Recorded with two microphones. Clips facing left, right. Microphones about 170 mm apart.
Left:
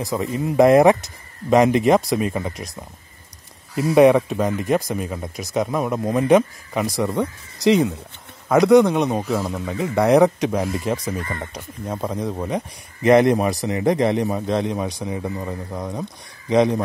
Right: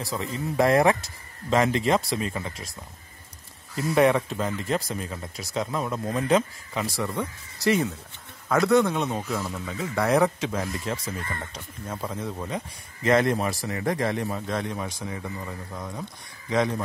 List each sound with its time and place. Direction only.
0.0 s speech: 20° left (ahead or behind)
3.7 s a man's voice: 15° left (ahead or behind)